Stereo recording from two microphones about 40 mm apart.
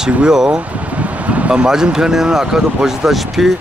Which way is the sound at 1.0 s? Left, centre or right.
Right.